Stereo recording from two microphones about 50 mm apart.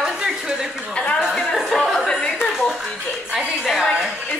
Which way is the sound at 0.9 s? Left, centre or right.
Left.